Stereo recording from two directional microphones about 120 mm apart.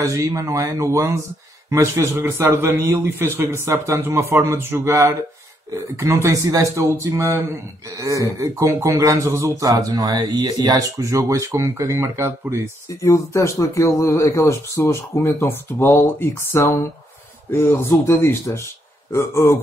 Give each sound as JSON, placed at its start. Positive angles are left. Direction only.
{"t": 0.0, "sound": "speech", "side_deg": -25}
{"t": 6.2, "sound": "speech", "side_deg": -25}
{"t": 13.0, "sound": "speech", "side_deg": 25}